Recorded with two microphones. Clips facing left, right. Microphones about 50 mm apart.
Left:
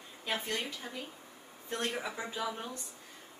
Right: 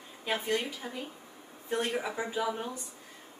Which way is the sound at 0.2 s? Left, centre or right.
Centre.